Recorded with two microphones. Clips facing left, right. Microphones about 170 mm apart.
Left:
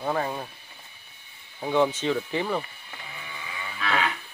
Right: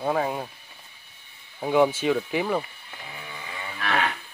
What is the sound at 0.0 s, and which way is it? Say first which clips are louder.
Speech: right 2 dB; 5° right (ahead or behind).